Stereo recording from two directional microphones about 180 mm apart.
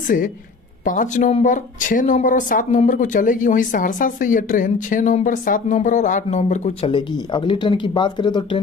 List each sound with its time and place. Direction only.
0.8 s speech: 45° left (ahead or behind); by 8.5 s 25° left (ahead or behind)